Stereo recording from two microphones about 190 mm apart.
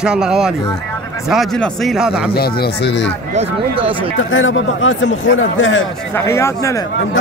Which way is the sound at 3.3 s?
30° right (ahead or behind).